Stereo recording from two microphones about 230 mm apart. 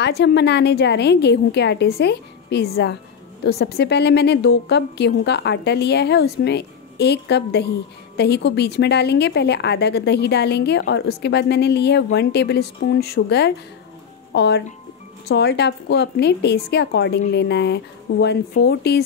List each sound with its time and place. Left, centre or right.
0.0 s a woman's voice: left